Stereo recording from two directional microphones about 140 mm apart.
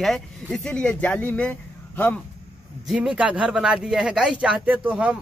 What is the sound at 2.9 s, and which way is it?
Speech, 5° right (ahead or behind).